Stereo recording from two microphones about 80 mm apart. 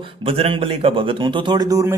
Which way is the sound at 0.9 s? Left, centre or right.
Right.